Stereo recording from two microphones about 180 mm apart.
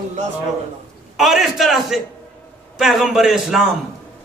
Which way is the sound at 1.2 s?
Centre (ahead or behind).